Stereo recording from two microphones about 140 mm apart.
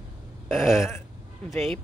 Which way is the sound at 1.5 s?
Centre (ahead or behind).